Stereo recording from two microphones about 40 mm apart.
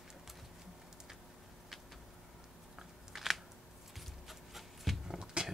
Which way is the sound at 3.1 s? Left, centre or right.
Centre.